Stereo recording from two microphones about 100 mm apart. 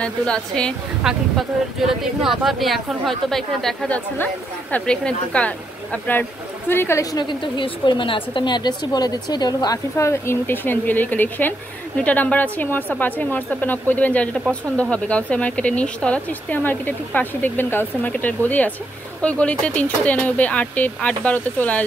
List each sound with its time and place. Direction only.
0.0 s speech: 10° left (ahead or behind)
1.0 s speech: 5° right (ahead or behind)
3.9 s a woman's voice: 15° left (ahead or behind)
7.1 s speech: 50° left (ahead or behind); by 21.8 s 15° left (ahead or behind)